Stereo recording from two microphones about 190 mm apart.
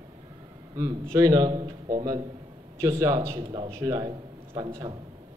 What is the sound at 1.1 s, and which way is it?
A man's voice, 20° right (ahead or behind).